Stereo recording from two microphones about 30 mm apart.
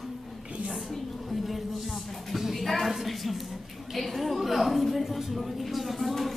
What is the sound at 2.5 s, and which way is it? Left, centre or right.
A woman's voice, centre.